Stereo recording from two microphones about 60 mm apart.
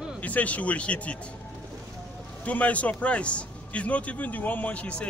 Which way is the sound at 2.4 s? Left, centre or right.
Left.